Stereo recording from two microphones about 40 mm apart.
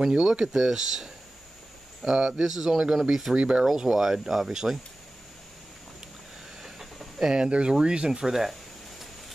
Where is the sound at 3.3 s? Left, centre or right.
Right.